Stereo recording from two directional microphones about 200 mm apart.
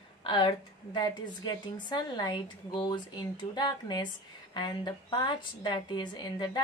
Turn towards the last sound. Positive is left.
turn(degrees=20)  # may be behind; listen again after turning